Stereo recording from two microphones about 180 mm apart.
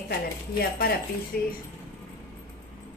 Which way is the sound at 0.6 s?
55° left (ahead or behind).